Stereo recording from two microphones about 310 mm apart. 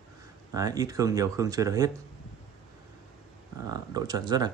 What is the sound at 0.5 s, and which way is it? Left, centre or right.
Speech, centre.